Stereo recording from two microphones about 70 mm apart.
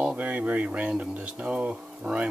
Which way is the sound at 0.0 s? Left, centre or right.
Centre.